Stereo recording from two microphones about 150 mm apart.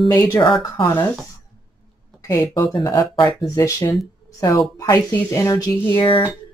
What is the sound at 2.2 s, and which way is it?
Speech, 20° left (ahead or behind).